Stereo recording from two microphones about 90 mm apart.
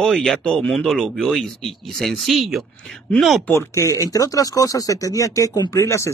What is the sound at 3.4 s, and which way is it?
Speech, 35° left (ahead or behind).